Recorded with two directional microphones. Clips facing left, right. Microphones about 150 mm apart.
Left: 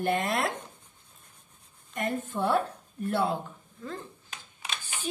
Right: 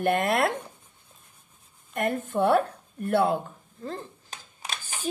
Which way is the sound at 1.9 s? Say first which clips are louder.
Right 5 dB; 60° right (ahead or behind).